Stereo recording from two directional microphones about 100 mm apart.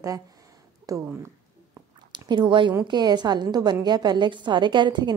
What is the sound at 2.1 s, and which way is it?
A woman's voice, 50° right (ahead or behind).